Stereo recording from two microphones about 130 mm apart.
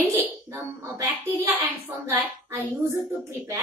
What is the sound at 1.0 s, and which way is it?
A child's voice, 20° right (ahead or behind).